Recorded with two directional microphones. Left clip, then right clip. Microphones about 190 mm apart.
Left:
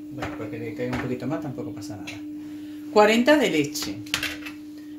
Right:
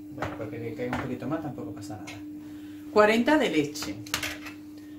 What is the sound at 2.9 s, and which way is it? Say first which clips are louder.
Speech: left 4 dB; 40° left (ahead or behind).